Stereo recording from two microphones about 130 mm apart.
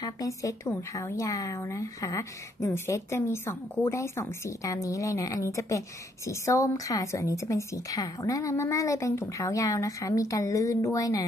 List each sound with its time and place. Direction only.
0.0 s speech: 25° left (ahead or behind)